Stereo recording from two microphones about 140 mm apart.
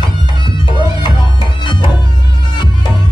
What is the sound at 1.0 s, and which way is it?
Music, 35° left (ahead or behind).